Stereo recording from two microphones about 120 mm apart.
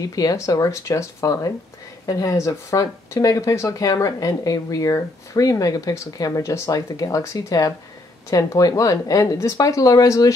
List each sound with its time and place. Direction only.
0.1 s speech: 30° left (ahead or behind)